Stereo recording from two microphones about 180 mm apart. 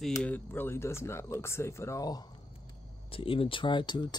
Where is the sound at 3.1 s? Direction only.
30° left (ahead or behind).